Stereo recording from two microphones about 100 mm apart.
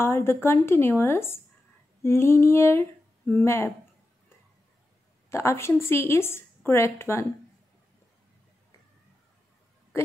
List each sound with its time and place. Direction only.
0.0 s a woman's voice: 25° left (ahead or behind)
5.3 s a woman's voice: 30° left (ahead or behind)